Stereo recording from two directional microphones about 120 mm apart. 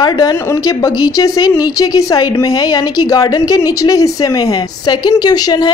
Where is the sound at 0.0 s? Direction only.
35° left (ahead or behind).